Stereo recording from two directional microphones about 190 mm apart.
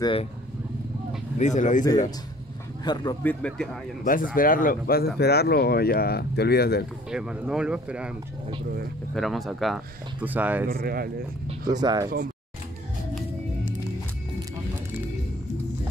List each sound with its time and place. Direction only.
0.0 s speech: 30° left (ahead or behind)
1.4 s speech: 40° left (ahead or behind)
2.8 s speech: 20° left (ahead or behind)
3.3 s speech: 5° left (ahead or behind)
4.0 s speech: 45° left (ahead or behind)
7.1 s speech: 5° right (ahead or behind)
9.1 s speech: centre (ahead or behind)
10.7 s speech: 55° right (ahead or behind)
11.4 s speech: 20° right (ahead or behind)